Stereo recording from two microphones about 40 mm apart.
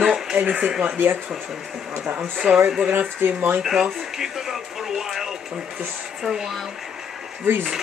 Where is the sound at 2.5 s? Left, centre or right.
Right.